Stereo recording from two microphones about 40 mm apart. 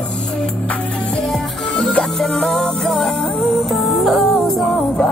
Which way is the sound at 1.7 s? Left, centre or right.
Left.